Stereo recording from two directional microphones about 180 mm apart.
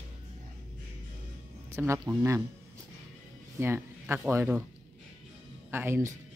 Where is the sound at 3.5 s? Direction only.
10° right (ahead or behind).